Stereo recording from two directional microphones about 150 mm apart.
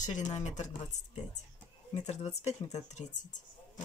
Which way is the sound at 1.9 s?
45° left (ahead or behind).